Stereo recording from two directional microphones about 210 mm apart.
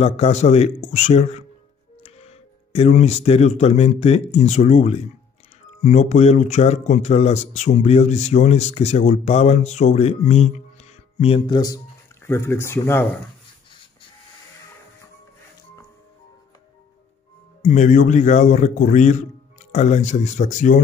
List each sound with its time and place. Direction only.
0.0 s speech: 30° left (ahead or behind); by 13.0 s 10° left (ahead or behind)
17.6 s speech: 35° left (ahead or behind)